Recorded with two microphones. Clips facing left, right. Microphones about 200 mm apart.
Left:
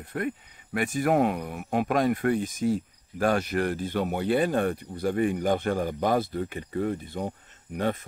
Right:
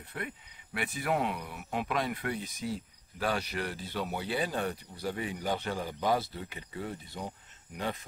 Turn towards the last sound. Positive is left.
turn(degrees=55)  # may be behind; listen again after turning